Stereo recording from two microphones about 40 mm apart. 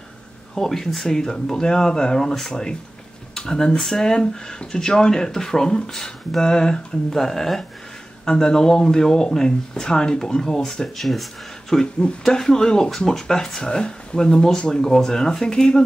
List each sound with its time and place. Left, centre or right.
0.6 s speech: centre